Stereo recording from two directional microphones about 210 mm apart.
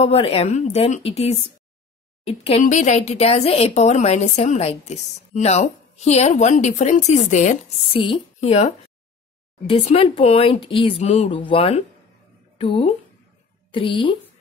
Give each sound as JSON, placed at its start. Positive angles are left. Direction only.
{"t": 0.0, "sound": "a woman's voice", "side_deg": 30}